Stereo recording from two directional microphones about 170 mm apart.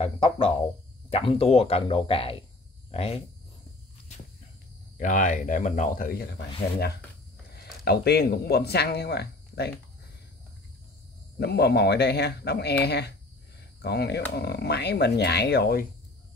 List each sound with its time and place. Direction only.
0.0 s speech: 30° left (ahead or behind)
4.9 s speech: 50° left (ahead or behind); by 9.7 s 75° left (ahead or behind)
11.3 s speech: 75° left (ahead or behind)